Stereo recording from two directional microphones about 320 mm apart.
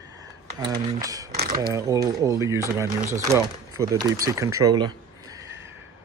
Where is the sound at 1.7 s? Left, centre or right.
Centre.